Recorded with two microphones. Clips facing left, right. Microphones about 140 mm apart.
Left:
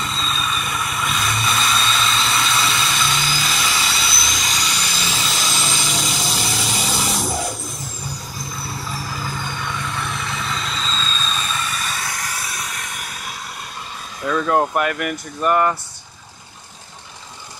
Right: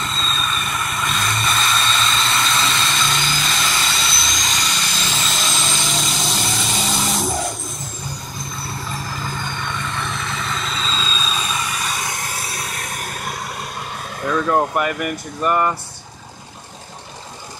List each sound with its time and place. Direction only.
0.0 s vehicle: 5° left (ahead or behind); by 13.4 s 45° right (ahead or behind)
14.5 s speech: centre (ahead or behind)